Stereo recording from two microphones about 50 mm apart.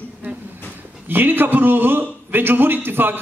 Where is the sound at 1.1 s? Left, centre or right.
Right.